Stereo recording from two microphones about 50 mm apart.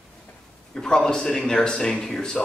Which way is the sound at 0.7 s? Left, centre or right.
Centre.